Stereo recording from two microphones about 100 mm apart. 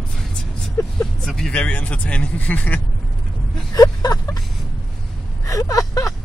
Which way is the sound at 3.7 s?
40° left (ahead or behind).